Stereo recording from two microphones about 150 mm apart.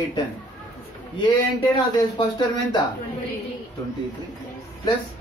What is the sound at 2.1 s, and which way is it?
Speech, 30° left (ahead or behind).